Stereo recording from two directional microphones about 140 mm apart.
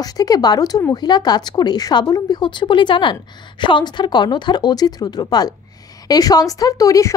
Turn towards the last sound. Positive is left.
turn(degrees=25)  # may be behind; listen again after turning